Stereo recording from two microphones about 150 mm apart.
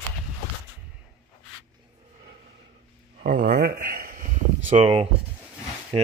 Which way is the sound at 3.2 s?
90° right.